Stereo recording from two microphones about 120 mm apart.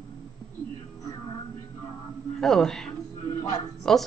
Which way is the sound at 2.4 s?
5° left (ahead or behind).